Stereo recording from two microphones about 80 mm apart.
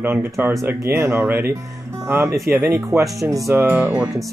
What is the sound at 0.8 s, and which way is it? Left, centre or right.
Speech, right.